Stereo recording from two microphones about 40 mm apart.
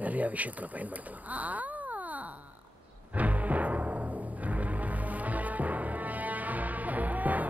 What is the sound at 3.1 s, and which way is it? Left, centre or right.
Timpani, right.